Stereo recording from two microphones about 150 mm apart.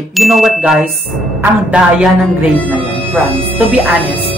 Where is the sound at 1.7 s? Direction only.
10° right (ahead or behind).